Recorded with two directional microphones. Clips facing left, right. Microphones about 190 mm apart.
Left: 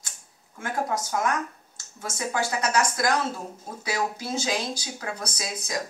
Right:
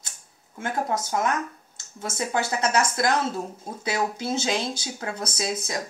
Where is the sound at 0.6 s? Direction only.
25° right (ahead or behind).